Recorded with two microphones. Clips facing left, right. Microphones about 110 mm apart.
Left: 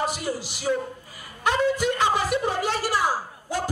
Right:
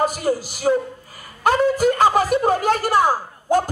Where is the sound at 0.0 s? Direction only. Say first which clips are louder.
Right 7 dB; 45° right (ahead or behind).